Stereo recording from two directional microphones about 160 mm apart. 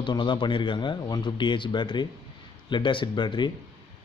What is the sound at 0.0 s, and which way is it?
A man's voice, 30° left (ahead or behind).